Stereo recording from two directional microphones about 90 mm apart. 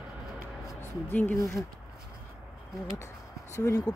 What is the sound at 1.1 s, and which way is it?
Speech, 20° left (ahead or behind).